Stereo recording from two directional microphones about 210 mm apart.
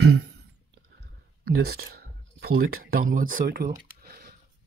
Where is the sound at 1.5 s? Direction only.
50° right (ahead or behind).